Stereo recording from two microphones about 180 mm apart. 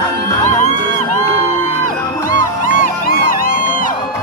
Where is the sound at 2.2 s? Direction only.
50° left (ahead or behind).